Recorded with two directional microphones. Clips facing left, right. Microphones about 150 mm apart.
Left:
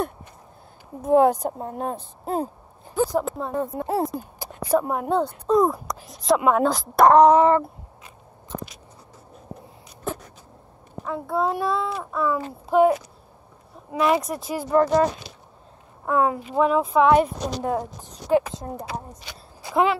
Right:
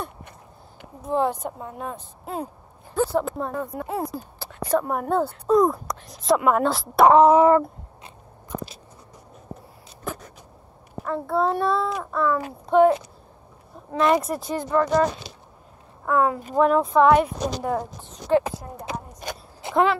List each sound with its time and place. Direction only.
1.0 s a woman's voice: 50° left (ahead or behind)
2.9 s speech: 10° left (ahead or behind)
3.5 s speech: 20° left (ahead or behind); by 7.6 s 5° right (ahead or behind)
11.1 s speech: 5° left (ahead or behind)
13.9 s speech: 5° left (ahead or behind)
14.7 s speech: 25° left (ahead or behind)
16.1 s speech: 20° left (ahead or behind)
16.5 s speech: centre (ahead or behind)
18.3 s speech: 15° left (ahead or behind)
19.2 s speech: 50° right (ahead or behind)
19.7 s speech: 10° left (ahead or behind)